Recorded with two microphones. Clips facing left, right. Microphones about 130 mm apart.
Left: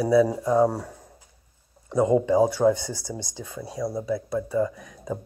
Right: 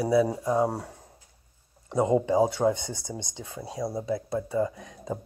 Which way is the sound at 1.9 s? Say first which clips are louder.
Left 3 dB; 25° right (ahead or behind).